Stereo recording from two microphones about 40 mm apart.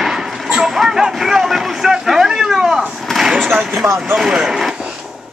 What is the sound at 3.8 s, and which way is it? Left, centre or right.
Speech, right.